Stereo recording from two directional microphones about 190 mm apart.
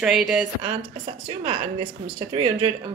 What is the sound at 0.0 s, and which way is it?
Speech, centre (ahead or behind).